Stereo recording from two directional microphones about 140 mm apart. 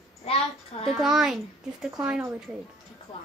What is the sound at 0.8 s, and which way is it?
A child's voice, 5° right (ahead or behind).